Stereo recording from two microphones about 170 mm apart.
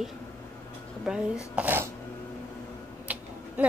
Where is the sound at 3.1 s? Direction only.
10° right (ahead or behind).